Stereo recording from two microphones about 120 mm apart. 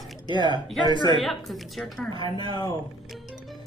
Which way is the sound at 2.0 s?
35° left (ahead or behind).